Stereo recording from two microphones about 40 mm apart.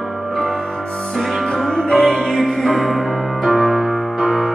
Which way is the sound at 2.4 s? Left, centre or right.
Centre.